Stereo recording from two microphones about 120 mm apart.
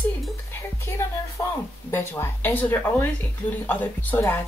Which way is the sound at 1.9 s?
20° left (ahead or behind).